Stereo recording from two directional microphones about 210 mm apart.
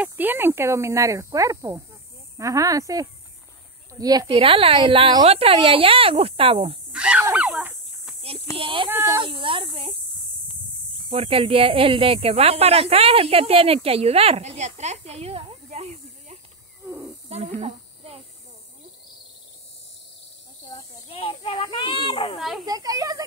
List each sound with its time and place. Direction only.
0.0 s speech: 10° right (ahead or behind); by 6.8 s 25° right (ahead or behind)
6.9 s fowl: 5° right (ahead or behind)
8.5 s speech: 25° right (ahead or behind)
8.8 s speech: 10° right (ahead or behind)
9.2 s speech: 25° right (ahead or behind)
11.1 s speech: 25° right (ahead or behind)
17.3 s a sound: 30° right (ahead or behind)
20.7 s a sound: 25° left (ahead or behind)
22.7 s speech: 15° right (ahead or behind)